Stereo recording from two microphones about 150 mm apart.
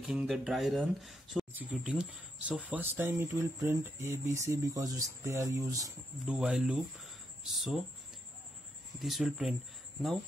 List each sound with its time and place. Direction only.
0.0 s speech: 5° right (ahead or behind); by 5.9 s 20° right (ahead or behind)
6.2 s speech: 5° right (ahead or behind)
9.0 s speech: centre (ahead or behind)